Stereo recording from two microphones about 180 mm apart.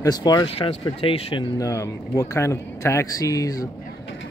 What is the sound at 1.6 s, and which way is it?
Speech, 20° left (ahead or behind).